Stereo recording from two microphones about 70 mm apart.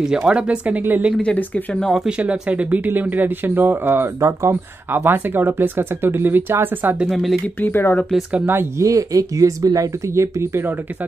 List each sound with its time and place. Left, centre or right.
0.1 s speech: centre
1.2 s speech: centre
2.0 s speech: centre; by 4.1 s right
4.2 s speech: right
4.9 s speech: right
7.1 s speech: centre
7.6 s speech: left
8.5 s speech: right
8.8 s speech: right